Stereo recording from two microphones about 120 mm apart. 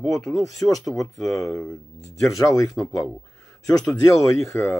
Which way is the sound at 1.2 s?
30° left (ahead or behind).